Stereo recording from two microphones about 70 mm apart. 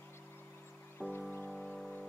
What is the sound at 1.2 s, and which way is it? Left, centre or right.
Music, left.